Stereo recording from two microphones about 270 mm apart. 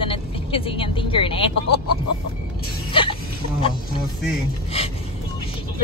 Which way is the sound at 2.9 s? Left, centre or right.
Centre.